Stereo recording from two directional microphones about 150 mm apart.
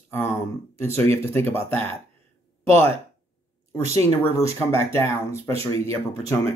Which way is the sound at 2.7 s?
15° left (ahead or behind).